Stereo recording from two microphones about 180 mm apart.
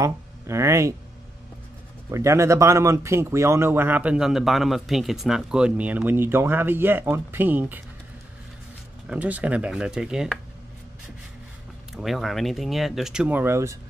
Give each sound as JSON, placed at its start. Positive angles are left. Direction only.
{"t": 0.0, "sound": "speech", "side_deg": -15}
{"t": 2.0, "sound": "speech", "side_deg": -15}
{"t": 9.1, "sound": "speech", "side_deg": -10}
{"t": 12.0, "sound": "speech", "side_deg": 0}